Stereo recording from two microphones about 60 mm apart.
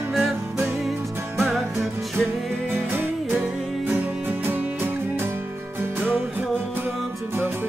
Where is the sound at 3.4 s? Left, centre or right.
Right.